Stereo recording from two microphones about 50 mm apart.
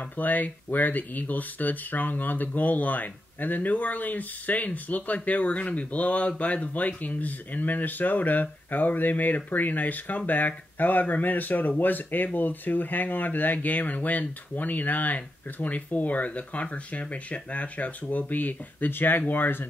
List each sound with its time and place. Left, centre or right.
0.2 s speech: left